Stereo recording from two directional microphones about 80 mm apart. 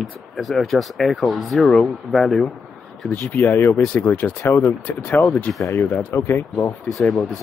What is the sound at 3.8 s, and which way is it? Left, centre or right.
Speech, centre.